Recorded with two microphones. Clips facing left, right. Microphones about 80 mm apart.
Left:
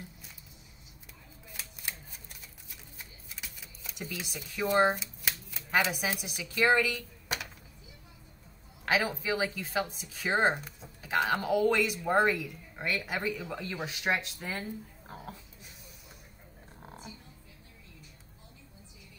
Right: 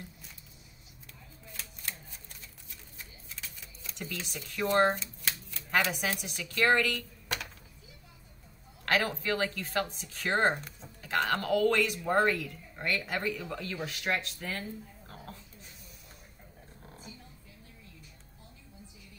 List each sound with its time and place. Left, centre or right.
3.3 s speech: centre
8.8 s speech: centre
16.8 s music: left